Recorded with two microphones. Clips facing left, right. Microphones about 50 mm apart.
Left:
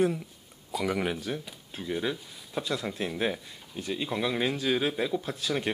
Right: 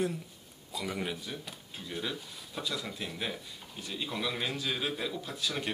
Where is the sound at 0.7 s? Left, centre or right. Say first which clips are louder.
Left 7 dB; left.